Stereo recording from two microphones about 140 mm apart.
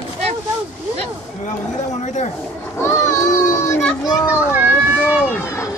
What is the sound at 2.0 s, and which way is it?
Speech, 60° left (ahead or behind).